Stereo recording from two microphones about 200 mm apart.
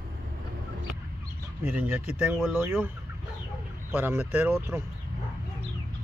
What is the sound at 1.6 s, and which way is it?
Speech, 10° right (ahead or behind).